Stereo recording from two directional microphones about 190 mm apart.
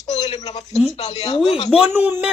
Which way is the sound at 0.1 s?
35° left (ahead or behind).